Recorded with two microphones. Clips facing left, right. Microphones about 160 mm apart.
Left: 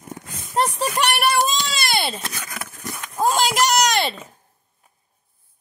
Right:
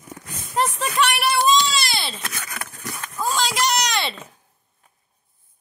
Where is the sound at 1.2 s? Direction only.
45° left (ahead or behind).